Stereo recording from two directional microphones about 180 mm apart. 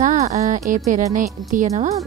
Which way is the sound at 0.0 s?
40° right (ahead or behind).